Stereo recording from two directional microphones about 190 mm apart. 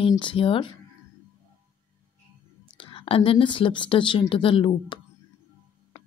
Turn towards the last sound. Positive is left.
turn(degrees=25)  # may be behind; listen again after turning